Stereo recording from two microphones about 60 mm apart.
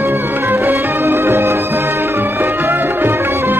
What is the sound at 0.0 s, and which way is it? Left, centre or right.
Music, right.